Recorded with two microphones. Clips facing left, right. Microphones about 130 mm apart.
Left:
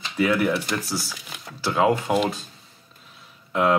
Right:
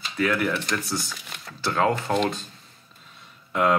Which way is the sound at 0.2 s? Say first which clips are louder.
Left 3 dB; 15° left (ahead or behind).